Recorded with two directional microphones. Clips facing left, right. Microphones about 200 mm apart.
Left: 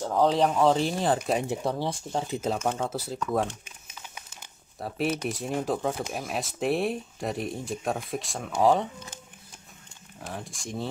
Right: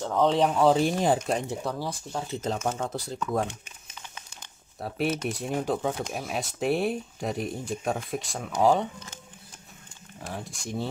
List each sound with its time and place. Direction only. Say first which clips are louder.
0.0 s speech: even; centre (ahead or behind)
1.6 s speech: left 3 dB; 25° left (ahead or behind)
2.3 s speech: even; 10° left (ahead or behind)
10.2 s speech: right 1 dB; centre (ahead or behind)